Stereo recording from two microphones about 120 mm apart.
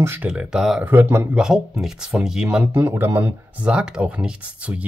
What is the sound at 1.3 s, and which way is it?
Speech, 5° right (ahead or behind).